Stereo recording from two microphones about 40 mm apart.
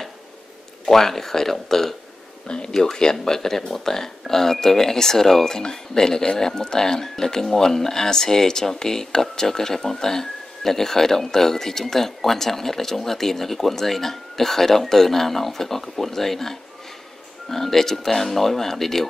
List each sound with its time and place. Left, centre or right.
0.8 s speech: centre
2.4 s speech: left